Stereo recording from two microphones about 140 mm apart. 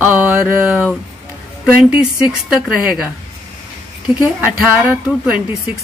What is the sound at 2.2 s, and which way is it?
Speech, 5° right (ahead or behind).